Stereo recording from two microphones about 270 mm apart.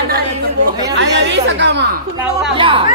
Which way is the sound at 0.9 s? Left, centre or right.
Right.